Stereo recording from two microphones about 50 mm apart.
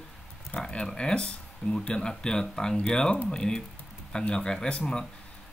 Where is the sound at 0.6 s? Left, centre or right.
Centre.